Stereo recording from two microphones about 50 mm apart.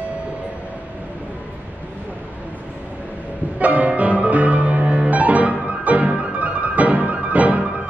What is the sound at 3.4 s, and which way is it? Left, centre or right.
Music, right.